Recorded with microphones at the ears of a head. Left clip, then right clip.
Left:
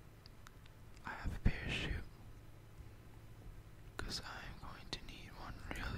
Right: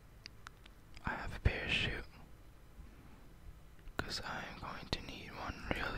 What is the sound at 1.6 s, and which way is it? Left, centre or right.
Whispering, right.